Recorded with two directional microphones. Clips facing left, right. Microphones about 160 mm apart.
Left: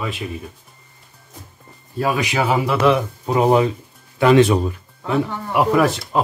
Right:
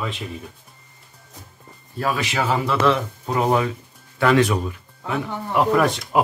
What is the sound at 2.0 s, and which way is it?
Speech, 15° left (ahead or behind).